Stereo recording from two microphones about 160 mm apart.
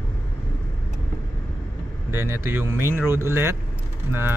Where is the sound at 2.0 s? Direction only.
15° right (ahead or behind).